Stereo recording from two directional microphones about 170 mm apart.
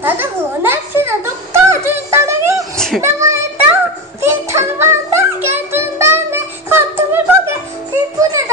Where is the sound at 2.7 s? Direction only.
5° left (ahead or behind).